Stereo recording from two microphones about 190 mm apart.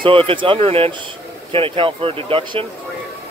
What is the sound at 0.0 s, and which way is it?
Speech, 25° right (ahead or behind).